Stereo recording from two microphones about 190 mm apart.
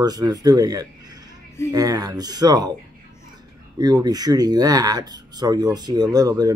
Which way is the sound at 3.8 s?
20° right (ahead or behind).